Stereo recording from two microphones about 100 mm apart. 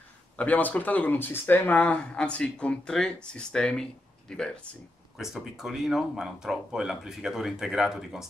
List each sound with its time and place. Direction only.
0.4 s speech: 15° left (ahead or behind)
5.1 s speech: 5° right (ahead or behind)